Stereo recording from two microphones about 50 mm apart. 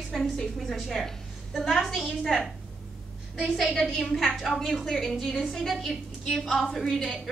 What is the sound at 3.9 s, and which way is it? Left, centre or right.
A woman's voice, centre.